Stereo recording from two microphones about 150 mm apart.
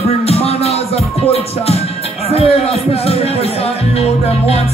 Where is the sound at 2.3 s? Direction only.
40° left (ahead or behind).